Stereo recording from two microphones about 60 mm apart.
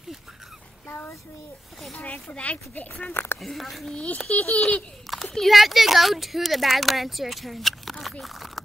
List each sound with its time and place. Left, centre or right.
0.8 s a child's voice: left
2.0 s speech: centre
3.1 s speech: left
3.3 s speech: centre
3.9 s speech: centre
5.1 s speech: centre